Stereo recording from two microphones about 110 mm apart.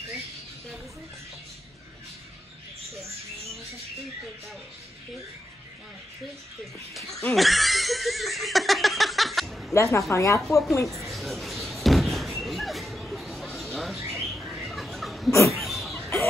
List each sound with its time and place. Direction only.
6.6 s speech: centre (ahead or behind)
9.8 s a woman's voice: 25° left (ahead or behind)
10.9 s slam: centre (ahead or behind)
15.3 s a sound: 25° left (ahead or behind)
15.6 s chicken: centre (ahead or behind)